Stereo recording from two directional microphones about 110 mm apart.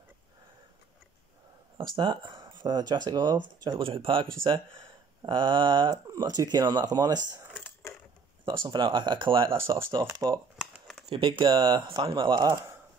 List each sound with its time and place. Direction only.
2.0 s speech: 45° right (ahead or behind)
6.1 s speech: 35° right (ahead or behind)
8.5 s speech: 45° right (ahead or behind)
10.6 s a sound: centre (ahead or behind)
11.1 s speech: 50° right (ahead or behind)